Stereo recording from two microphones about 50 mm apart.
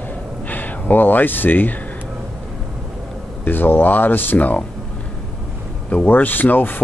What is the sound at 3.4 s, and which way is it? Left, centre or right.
Speech, left.